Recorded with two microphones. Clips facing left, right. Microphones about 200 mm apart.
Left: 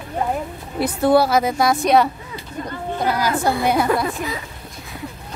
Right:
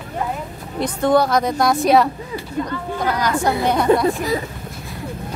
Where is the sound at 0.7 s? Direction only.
5° left (ahead or behind).